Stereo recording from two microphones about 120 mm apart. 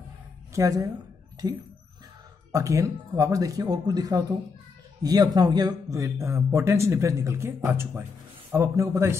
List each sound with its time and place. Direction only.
0.6 s a man's voice: 30° right (ahead or behind)